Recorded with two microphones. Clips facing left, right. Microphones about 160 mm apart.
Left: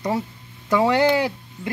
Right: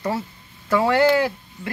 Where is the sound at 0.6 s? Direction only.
15° left (ahead or behind).